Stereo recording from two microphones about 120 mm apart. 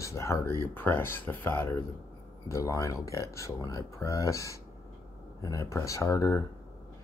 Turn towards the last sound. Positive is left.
turn(degrees=25)  # may be behind; listen again after turning